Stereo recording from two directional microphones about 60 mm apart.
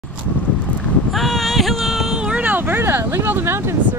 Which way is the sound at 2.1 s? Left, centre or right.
Centre.